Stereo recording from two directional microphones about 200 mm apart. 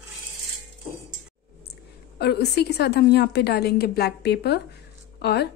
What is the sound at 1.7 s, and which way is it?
A woman's voice, 55° left (ahead or behind).